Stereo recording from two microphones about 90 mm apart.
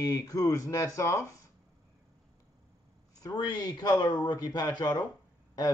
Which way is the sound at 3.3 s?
50° left (ahead or behind).